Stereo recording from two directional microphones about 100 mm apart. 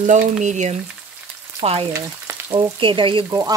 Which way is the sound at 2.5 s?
60° right (ahead or behind).